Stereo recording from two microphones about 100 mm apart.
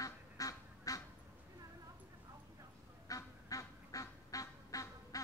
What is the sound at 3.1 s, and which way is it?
Goose, 35° left (ahead or behind).